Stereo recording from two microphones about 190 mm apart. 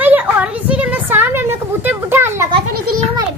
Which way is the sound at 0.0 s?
10° right (ahead or behind).